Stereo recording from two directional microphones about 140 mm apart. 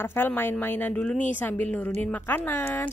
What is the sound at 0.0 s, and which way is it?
A woman's voice, 15° left (ahead or behind).